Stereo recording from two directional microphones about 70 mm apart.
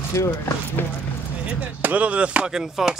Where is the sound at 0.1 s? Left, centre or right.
Left.